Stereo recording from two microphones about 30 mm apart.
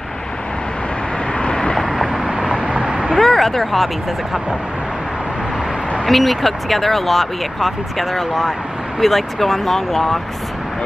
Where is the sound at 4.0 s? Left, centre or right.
Centre.